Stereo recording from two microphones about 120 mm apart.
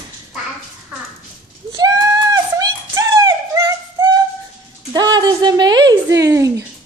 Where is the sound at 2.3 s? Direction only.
30° right (ahead or behind).